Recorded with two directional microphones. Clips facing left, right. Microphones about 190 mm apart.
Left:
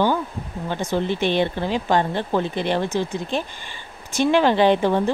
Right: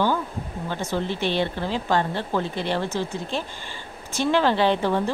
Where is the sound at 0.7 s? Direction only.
20° left (ahead or behind).